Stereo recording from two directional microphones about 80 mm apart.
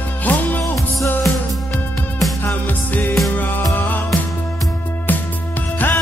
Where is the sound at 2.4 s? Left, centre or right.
Left.